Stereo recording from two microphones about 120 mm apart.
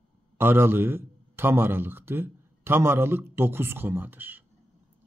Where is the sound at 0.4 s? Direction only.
20° right (ahead or behind).